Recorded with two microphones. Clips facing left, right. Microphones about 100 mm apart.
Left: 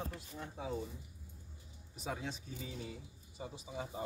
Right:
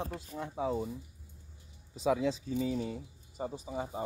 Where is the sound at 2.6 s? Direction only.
85° right.